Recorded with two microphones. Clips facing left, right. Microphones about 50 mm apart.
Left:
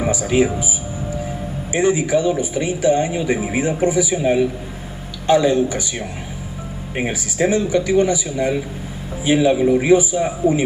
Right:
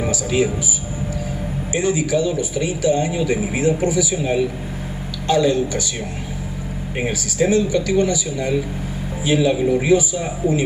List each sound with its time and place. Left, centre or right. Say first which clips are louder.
0.0 s speech: left 2 dB; left
1.7 s speech: left 3 dB; left
7.0 s speech: left 1 dB; left